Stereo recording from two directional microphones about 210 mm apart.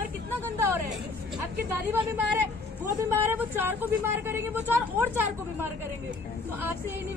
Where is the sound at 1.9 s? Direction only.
10° right (ahead or behind).